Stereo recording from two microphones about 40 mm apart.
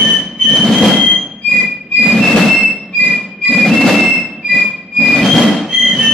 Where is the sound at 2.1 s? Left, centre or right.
Centre.